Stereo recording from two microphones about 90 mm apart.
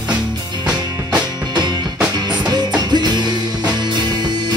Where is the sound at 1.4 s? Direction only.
50° right (ahead or behind).